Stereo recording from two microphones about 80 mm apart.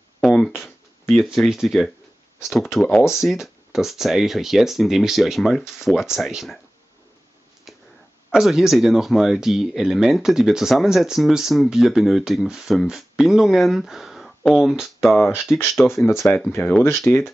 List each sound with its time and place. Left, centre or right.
0.2 s a sound: centre
1.2 s speech: centre
8.3 s speech: centre
16.1 s speech: left
16.5 s speech: centre
16.8 s speech: left